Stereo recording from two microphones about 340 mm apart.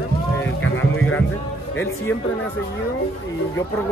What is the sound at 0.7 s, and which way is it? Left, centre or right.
Speech, left.